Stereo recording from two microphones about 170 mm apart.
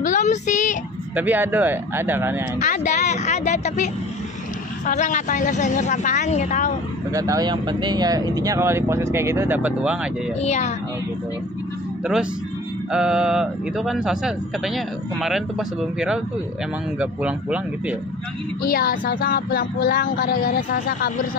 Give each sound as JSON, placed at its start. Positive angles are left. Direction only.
{"t": 0.0, "sound": "a sound", "side_deg": 45}
{"t": 1.1, "sound": "speech", "side_deg": -10}
{"t": 2.6, "sound": "speech", "side_deg": 45}
{"t": 7.1, "sound": "speech", "side_deg": -20}
{"t": 10.4, "sound": "speech", "side_deg": 40}
{"t": 12.9, "sound": "speech", "side_deg": -5}
{"t": 17.0, "sound": "speech", "side_deg": -5}
{"t": 18.6, "sound": "speech", "side_deg": 60}